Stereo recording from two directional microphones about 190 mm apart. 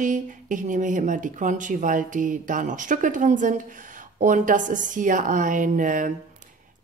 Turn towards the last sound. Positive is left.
turn(degrees=-45)  # may be behind; listen again after turning